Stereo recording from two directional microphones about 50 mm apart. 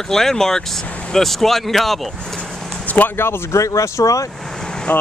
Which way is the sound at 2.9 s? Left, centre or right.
Left.